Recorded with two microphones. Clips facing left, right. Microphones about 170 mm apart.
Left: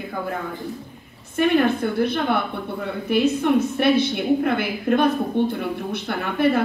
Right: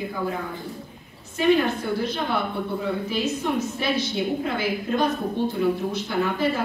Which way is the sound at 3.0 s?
60° left (ahead or behind).